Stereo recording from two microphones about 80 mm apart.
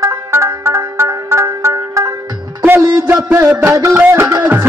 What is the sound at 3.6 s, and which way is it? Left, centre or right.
Music, right.